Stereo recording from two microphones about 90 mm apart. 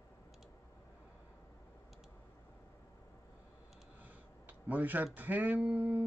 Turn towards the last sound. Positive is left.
turn(degrees=-15)  # may be behind; listen again after turning